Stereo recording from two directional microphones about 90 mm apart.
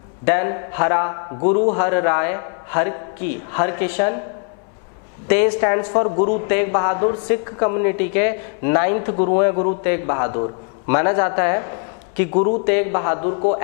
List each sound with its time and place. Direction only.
0.2 s a man's voice: 15° left (ahead or behind)
5.3 s a man's voice: 15° left (ahead or behind)